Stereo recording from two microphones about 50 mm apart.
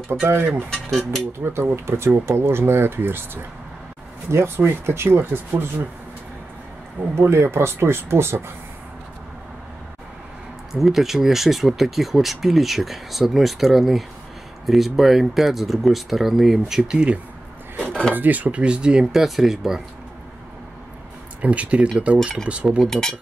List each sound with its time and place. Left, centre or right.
0.1 s speech: right
0.7 s speech: centre
1.4 s speech: right
4.6 s speech: right
7.2 s speech: right
10.7 s speech: centre
16.8 s speech: centre
17.7 s a sound: centre
18.1 s speech: right; by 19.2 s centre
19.2 s speech: centre
21.4 s speech: right
22.8 s speech: centre